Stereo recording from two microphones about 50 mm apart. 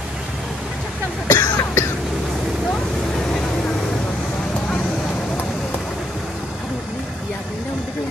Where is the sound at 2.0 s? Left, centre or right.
Centre.